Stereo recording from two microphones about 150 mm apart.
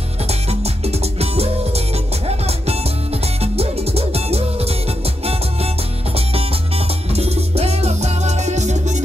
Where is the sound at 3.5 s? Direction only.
45° right (ahead or behind).